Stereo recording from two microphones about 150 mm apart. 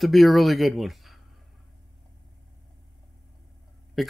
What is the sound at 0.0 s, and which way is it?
Speech, centre (ahead or behind).